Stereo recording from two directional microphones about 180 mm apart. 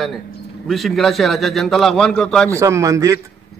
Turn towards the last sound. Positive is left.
turn(degrees=-20)  # may be behind; listen again after turning